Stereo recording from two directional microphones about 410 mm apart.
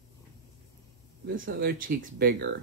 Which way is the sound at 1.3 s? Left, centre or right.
Right.